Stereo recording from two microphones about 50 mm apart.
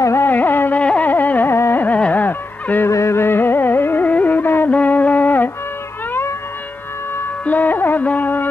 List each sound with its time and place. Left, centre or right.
0.0 s carnatic music: left
0.3 s carnatic music: left
0.7 s carnatic music: left
1.1 s carnatic music: left
1.5 s carnatic music: left
2.0 s music: left
2.2 s honk: left
2.9 s carnatic music: left
4.1 s music: left
4.6 s music: left
7.4 s music: left
8.0 s carnatic music: left